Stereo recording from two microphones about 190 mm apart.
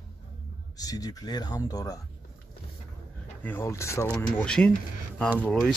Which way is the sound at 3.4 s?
10° left (ahead or behind).